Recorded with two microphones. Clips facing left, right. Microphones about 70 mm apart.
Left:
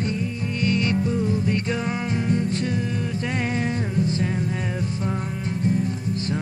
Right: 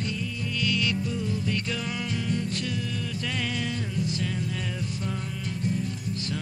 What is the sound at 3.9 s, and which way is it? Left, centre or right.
Music, left.